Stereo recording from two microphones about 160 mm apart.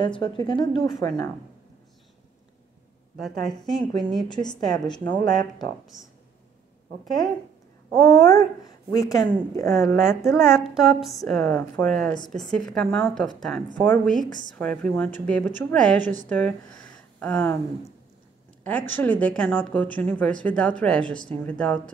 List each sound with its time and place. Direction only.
0.2 s speech: 30° left (ahead or behind)
3.2 s speech: centre (ahead or behind)
4.3 s speech: 25° left (ahead or behind)
8.1 s speech: 25° left (ahead or behind)
9.7 s speech: centre (ahead or behind)
14.2 s speech: 25° left (ahead or behind)
14.6 s speech: 5° left (ahead or behind)